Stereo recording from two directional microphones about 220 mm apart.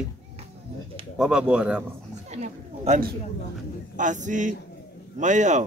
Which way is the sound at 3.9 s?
35° right (ahead or behind).